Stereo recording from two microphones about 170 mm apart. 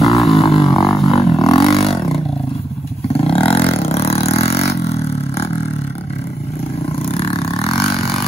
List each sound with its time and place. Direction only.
0.0 s didgeridoo: centre (ahead or behind)
1.0 s a sound: 35° left (ahead or behind)
1.5 s roar: 35° left (ahead or behind)
3.3 s vehicle: 35° left (ahead or behind)
7.1 s vehicle: 35° left (ahead or behind)